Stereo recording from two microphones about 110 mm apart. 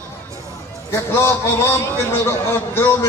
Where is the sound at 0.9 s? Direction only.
25° left (ahead or behind).